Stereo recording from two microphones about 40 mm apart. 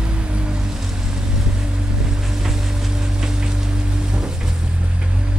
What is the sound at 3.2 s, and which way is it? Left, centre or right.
Rain on surface, centre.